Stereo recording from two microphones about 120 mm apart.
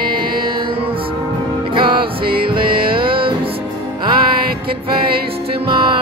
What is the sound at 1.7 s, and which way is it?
Music, 45° right (ahead or behind).